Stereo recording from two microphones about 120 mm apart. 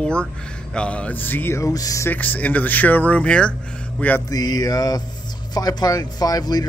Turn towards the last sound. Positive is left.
turn(degrees=30)  # may be behind; listen again after turning